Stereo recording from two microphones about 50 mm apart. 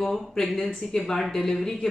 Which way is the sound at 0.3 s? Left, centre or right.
Centre.